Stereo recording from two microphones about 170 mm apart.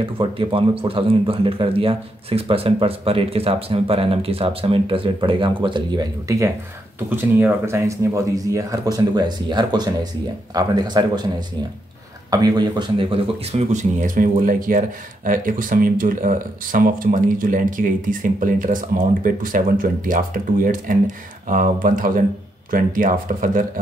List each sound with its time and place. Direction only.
0.0 s speech: 30° right (ahead or behind); by 23.7 s 50° right (ahead or behind)